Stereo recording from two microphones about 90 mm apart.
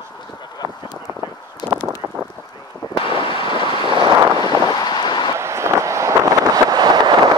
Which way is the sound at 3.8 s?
65° right (ahead or behind).